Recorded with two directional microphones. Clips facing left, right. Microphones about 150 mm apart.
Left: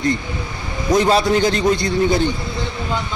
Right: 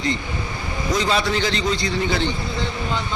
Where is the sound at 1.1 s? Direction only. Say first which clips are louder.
Left 6 dB; 45° left (ahead or behind).